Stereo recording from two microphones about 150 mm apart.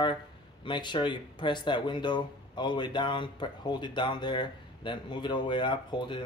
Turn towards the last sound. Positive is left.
turn(degrees=30)  # may be behind; listen again after turning